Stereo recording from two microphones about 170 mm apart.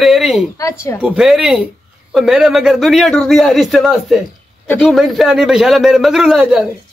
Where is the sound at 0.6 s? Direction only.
20° left (ahead or behind).